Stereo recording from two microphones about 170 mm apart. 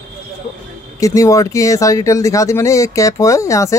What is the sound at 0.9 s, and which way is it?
Speech, 20° left (ahead or behind).